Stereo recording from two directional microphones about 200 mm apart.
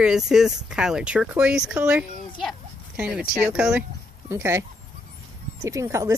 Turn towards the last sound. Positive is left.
turn(degrees=-15)  # may be behind; listen again after turning